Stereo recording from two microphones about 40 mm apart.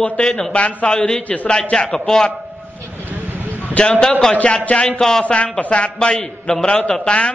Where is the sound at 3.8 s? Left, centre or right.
Left.